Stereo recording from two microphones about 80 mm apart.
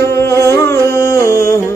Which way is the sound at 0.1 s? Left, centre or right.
Left.